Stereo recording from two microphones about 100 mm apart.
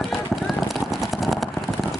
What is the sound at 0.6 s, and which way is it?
Vehicle, centre (ahead or behind).